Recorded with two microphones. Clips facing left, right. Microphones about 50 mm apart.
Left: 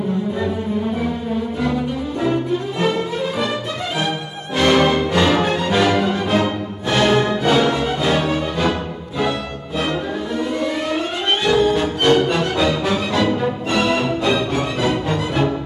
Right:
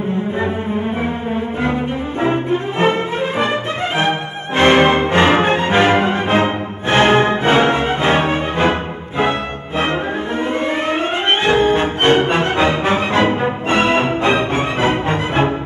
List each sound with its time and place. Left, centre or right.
2.2 s music: right
10.6 s music: right